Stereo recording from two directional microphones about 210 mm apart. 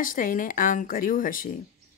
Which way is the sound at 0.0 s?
40° left (ahead or behind).